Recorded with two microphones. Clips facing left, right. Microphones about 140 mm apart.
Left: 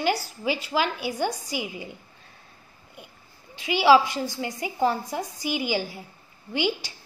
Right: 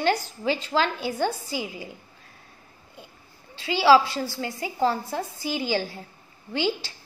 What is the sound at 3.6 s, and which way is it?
A woman's voice, 15° left (ahead or behind).